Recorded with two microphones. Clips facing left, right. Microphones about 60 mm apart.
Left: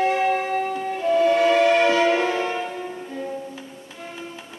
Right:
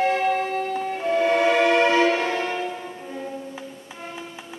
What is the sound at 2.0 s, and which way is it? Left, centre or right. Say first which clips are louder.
Music: left 2 dB; left.